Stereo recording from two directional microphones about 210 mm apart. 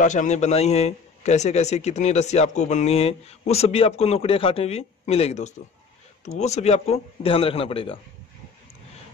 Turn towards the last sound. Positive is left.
turn(degrees=25)  # may be behind; listen again after turning